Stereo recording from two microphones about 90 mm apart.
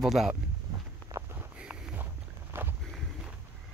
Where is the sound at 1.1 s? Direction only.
35° right (ahead or behind).